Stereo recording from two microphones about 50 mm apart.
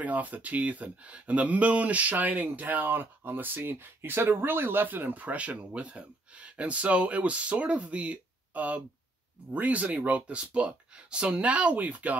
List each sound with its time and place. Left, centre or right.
0.0 s speech: right